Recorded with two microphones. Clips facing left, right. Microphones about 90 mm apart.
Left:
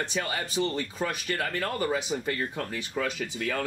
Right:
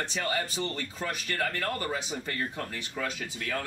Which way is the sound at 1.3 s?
20° left (ahead or behind).